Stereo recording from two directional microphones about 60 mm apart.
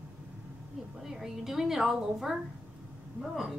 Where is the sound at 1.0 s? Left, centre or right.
Centre.